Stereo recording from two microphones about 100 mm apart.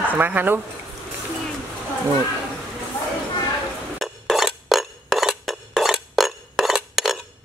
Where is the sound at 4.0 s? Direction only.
Centre (ahead or behind).